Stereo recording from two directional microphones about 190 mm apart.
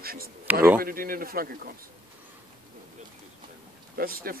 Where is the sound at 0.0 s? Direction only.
50° right (ahead or behind).